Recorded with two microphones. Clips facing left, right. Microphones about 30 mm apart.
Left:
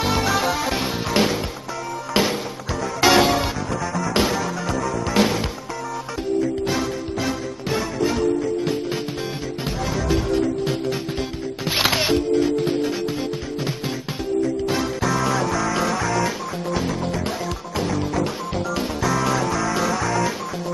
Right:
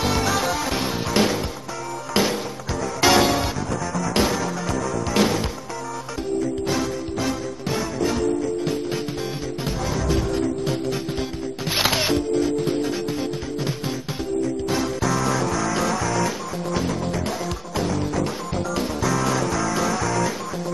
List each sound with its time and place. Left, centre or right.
0.0 s music: centre
6.6 s music: centre
14.7 s music: centre